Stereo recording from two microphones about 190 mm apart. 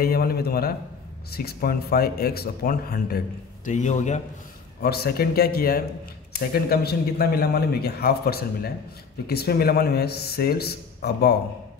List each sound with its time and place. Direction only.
0.0 s speech: 55° left (ahead or behind)
3.6 s a man's voice: 40° left (ahead or behind)
4.8 s a man's voice: 55° left (ahead or behind)